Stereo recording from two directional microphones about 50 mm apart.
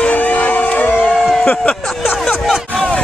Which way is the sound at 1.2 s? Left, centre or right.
Centre.